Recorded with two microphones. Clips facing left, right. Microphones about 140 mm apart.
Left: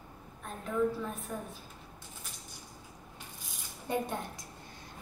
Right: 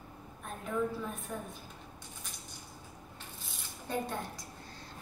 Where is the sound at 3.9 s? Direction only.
15° left (ahead or behind).